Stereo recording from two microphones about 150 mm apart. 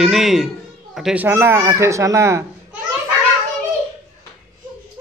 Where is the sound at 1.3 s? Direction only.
15° right (ahead or behind).